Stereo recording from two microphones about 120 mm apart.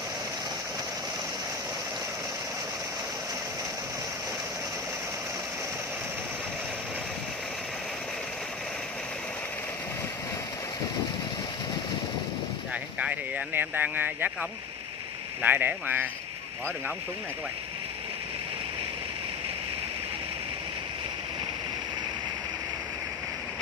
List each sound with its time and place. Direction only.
13.0 s speech: 15° right (ahead or behind)
15.4 s speech: 15° right (ahead or behind)